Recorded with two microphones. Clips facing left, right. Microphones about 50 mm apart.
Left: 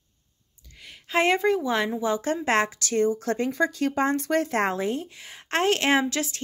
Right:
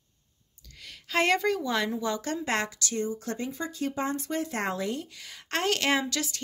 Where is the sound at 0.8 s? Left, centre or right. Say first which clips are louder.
Left 3 dB; left.